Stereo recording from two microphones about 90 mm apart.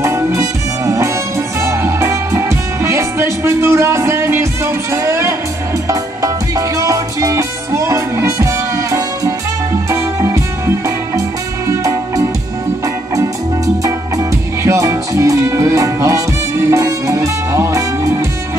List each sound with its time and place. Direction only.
0.0 s music: 35° right (ahead or behind)
11.7 s music: 35° right (ahead or behind)
13.8 s music: 35° right (ahead or behind)